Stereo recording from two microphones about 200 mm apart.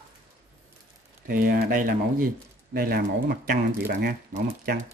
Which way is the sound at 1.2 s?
50° right (ahead or behind).